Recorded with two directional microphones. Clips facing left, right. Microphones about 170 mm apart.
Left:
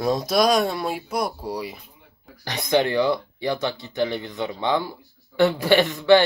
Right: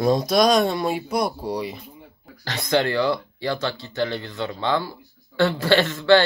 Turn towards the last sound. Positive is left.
turn(degrees=15)  # may be behind; listen again after turning